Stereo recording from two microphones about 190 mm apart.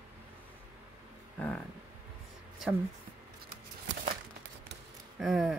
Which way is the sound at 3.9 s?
70° right (ahead or behind).